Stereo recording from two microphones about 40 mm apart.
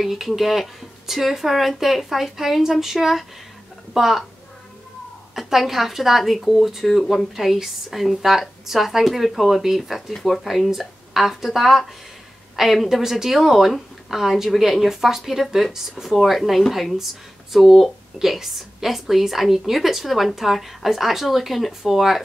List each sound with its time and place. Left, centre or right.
0.0 s a woman's voice: centre
5.3 s a woman's voice: centre